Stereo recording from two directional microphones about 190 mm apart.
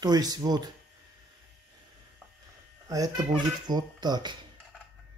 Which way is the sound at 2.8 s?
20° right (ahead or behind).